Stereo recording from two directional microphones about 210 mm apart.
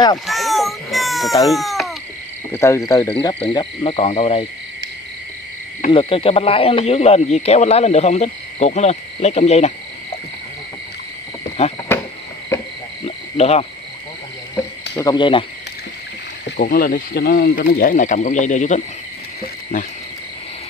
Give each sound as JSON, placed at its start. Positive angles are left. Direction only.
{"t": 0.3, "sound": "baby cry", "side_deg": 0}
{"t": 2.5, "sound": "speech", "side_deg": 15}
{"t": 5.9, "sound": "speech", "side_deg": 25}
{"t": 11.6, "sound": "speech", "side_deg": 30}
{"t": 12.5, "sound": "frog", "side_deg": 15}
{"t": 13.0, "sound": "cricket", "side_deg": 30}
{"t": 15.0, "sound": "speech", "side_deg": 20}
{"t": 16.7, "sound": "speech", "side_deg": 45}
{"t": 19.4, "sound": "cricket", "side_deg": 40}